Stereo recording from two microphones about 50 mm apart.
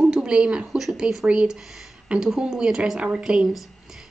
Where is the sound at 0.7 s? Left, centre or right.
Centre.